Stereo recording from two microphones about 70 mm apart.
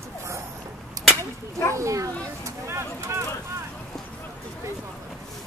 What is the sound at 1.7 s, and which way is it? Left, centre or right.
Children playing, right.